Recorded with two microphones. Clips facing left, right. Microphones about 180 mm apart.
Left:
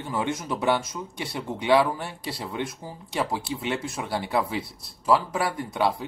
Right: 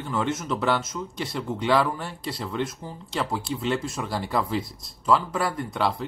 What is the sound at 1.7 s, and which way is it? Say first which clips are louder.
Speech: left 4 dB; 15° left (ahead or behind).